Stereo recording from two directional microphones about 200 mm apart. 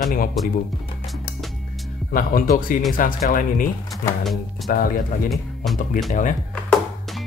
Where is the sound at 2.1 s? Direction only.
40° left (ahead or behind).